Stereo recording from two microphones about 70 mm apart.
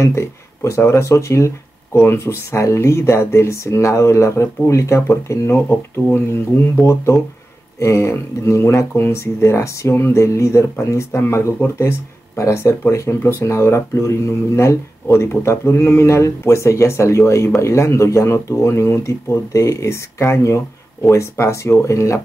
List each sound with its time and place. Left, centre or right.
0.0 s speech: left
7.8 s speech: left
13.9 s speech: left